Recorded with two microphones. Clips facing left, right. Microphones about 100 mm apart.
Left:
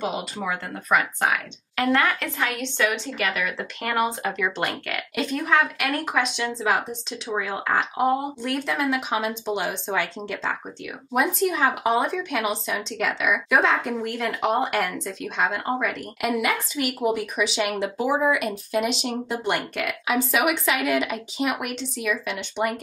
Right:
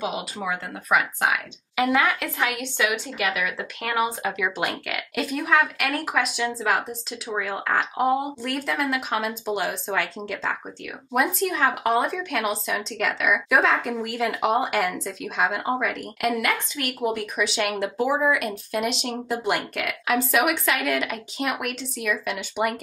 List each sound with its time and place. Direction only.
0.0 s speech: centre (ahead or behind)